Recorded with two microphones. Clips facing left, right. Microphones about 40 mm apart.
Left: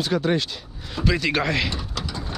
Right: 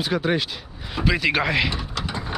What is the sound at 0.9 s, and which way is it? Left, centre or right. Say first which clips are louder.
Speech: right 1 dB; centre.